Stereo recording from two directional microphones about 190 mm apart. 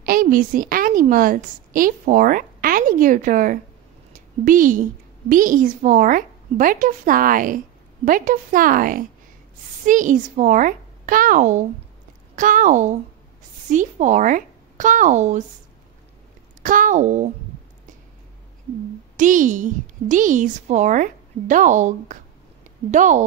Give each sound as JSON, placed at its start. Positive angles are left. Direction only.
{"t": 0.0, "sound": "a woman's voice", "side_deg": -50}
{"t": 4.1, "sound": "a sound", "side_deg": -45}
{"t": 5.3, "sound": "a woman's voice", "side_deg": -45}
{"t": 16.6, "sound": "a woman's voice", "side_deg": -45}
{"t": 19.1, "sound": "a woman's voice", "side_deg": -40}